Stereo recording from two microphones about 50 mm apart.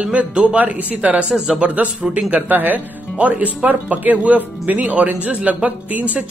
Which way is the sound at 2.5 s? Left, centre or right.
Right.